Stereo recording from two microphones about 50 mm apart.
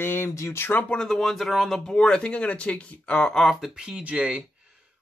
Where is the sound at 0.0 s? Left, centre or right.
Left.